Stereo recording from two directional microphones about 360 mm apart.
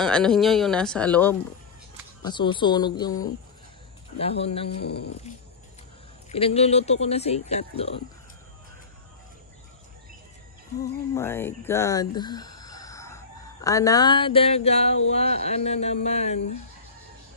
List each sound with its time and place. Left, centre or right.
0.0 s speech: centre
6.3 s speech: centre
11.1 s speech: centre